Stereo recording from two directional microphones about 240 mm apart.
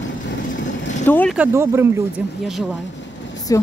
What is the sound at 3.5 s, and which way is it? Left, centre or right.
Speech, centre.